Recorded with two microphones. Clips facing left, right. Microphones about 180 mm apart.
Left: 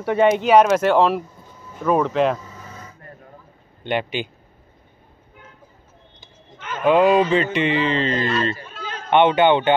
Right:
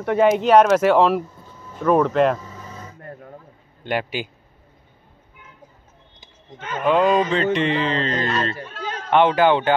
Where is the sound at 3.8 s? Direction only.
5° right (ahead or behind).